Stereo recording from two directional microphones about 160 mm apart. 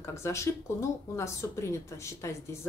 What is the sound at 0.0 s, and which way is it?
Speech, 20° left (ahead or behind).